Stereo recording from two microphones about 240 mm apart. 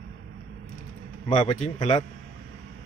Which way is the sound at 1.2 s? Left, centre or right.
Left.